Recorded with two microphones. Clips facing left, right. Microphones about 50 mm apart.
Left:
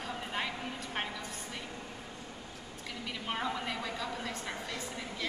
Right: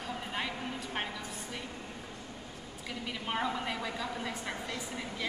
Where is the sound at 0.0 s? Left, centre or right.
Centre.